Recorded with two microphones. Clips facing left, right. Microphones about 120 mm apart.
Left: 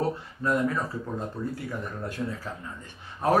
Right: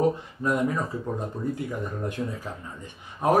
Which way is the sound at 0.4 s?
15° right (ahead or behind).